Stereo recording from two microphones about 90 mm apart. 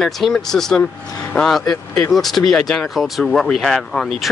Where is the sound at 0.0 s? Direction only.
5° left (ahead or behind).